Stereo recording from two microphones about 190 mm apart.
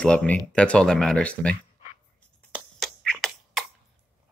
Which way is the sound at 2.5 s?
5° left (ahead or behind).